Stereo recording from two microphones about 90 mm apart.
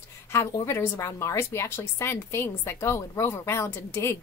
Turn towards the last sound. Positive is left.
turn(degrees=30)  # may be behind; listen again after turning